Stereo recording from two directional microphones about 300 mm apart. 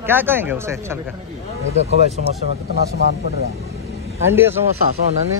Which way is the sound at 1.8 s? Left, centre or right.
Right.